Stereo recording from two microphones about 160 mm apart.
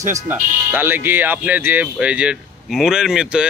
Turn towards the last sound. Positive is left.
turn(degrees=-5)  # may be behind; listen again after turning